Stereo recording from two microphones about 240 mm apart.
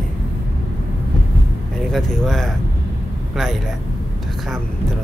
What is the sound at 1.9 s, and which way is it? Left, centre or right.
Speech, centre.